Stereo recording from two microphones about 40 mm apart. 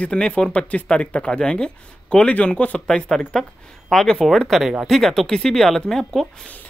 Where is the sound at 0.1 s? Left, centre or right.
Left.